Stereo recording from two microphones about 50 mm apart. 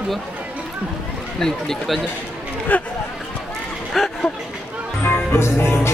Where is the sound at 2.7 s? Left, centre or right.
Left.